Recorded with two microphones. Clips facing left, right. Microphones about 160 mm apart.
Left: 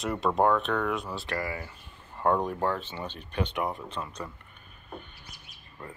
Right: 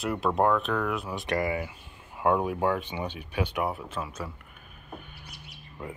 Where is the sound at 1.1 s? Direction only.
20° right (ahead or behind).